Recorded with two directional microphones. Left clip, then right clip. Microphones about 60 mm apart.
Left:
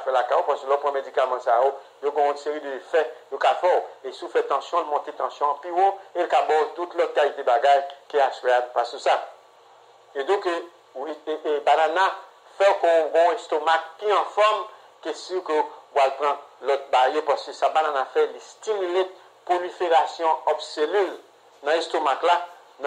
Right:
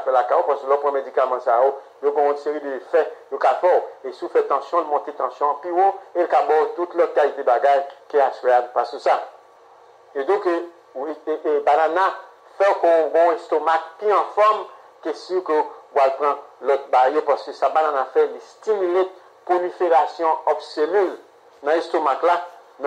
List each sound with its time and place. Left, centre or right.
0.0 s speech: right
1.6 s speech: right
2.2 s a man's voice: right
5.1 s speech: right
5.6 s a man's voice: right
11.1 s a man's voice: right